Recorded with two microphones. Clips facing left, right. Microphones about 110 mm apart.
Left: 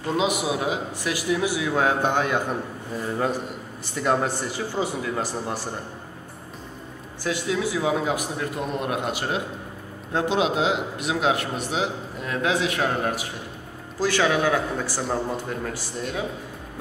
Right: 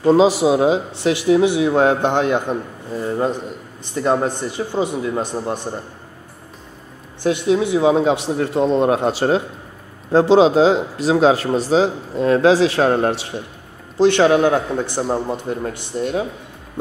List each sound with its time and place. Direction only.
0.0 s a man's voice: 30° right (ahead or behind)
4.6 s a man's voice: 20° right (ahead or behind)
7.2 s a man's voice: 25° right (ahead or behind)